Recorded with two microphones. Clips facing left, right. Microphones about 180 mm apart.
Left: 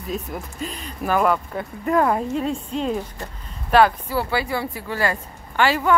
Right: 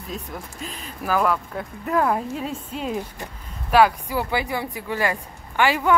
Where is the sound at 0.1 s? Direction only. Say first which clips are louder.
Left 3 dB; centre (ahead or behind).